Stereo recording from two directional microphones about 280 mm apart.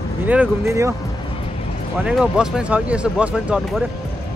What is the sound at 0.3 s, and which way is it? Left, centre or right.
Speech, centre.